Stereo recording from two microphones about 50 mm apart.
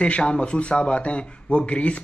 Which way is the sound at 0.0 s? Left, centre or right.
Left.